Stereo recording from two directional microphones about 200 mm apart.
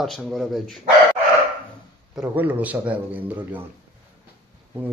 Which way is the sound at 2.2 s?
10° right (ahead or behind).